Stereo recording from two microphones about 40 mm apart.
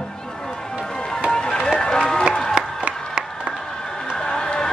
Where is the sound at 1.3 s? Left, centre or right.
Centre.